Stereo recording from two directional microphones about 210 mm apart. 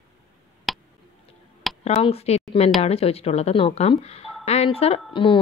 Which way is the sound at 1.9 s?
30° left (ahead or behind).